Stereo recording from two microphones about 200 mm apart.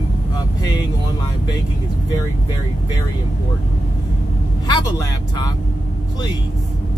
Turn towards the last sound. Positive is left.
turn(degrees=20)  # may be behind; listen again after turning